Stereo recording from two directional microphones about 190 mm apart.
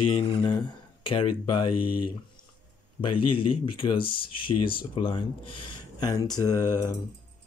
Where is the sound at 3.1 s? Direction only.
30° left (ahead or behind).